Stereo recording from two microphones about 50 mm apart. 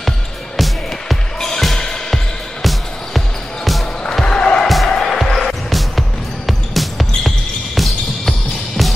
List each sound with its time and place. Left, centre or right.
0.6 s music: centre
4.0 s music: centre
4.6 s music: centre
7.2 s basketball bounce: centre